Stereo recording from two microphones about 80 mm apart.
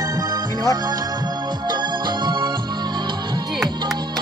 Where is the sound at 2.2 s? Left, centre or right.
Right.